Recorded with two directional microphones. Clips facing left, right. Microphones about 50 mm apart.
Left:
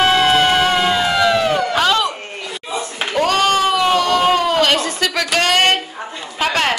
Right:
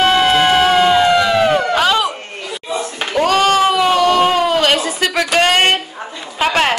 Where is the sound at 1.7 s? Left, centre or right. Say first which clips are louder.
Right 2 dB; centre.